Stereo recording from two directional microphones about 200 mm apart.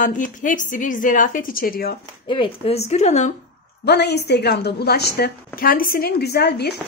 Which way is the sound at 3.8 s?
55° left (ahead or behind).